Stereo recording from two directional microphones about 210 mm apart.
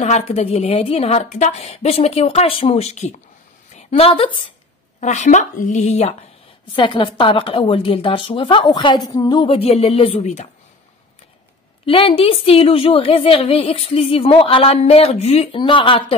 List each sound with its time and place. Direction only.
0.0 s a woman's voice: 30° left (ahead or behind)
11.8 s a woman's voice: 25° left (ahead or behind)